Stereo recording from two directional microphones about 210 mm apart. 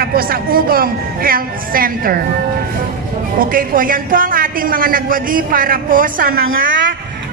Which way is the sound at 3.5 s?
40° right (ahead or behind).